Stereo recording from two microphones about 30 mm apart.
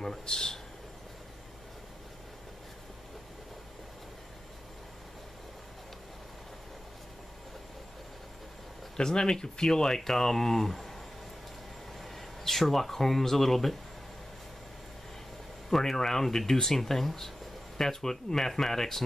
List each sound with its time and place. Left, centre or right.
0.0 s speech: left
8.9 s speech: left; by 11.0 s centre
12.0 s speech: centre
15.7 s speech: centre